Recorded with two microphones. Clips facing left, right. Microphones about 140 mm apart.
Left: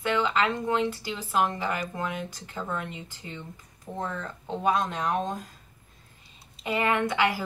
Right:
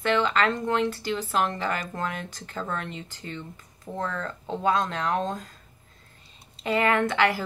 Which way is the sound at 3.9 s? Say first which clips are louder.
Right 2 dB; 5° right (ahead or behind).